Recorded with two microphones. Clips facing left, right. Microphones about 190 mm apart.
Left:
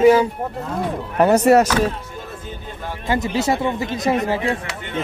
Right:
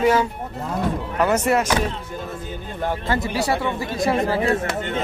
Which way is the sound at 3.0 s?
20° left (ahead or behind).